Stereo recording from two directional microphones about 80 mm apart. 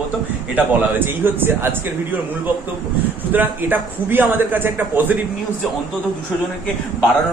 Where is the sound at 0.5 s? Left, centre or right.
Right.